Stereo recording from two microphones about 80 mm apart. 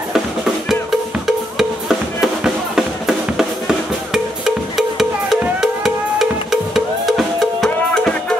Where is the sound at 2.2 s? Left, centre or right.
Centre.